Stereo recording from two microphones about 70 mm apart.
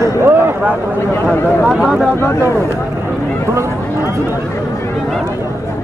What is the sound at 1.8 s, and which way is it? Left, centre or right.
Speech, centre.